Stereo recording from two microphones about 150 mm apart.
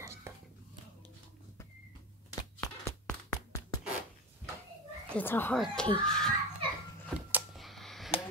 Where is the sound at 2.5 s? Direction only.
15° left (ahead or behind).